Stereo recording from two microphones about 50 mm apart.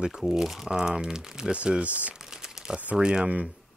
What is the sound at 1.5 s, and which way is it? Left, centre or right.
Speech, right.